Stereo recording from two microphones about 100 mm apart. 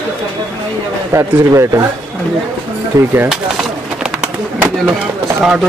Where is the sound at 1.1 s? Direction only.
25° right (ahead or behind).